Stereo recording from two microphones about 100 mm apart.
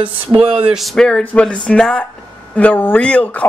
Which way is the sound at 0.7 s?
Centre (ahead or behind).